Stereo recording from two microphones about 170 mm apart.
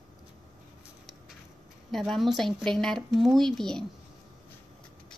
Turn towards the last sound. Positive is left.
turn(degrees=5)  # may be behind; listen again after turning